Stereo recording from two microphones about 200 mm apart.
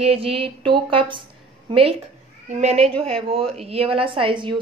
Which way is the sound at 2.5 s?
30° right (ahead or behind).